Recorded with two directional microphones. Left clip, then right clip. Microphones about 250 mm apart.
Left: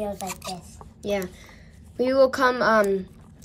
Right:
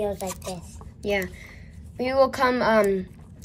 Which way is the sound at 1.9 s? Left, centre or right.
Centre.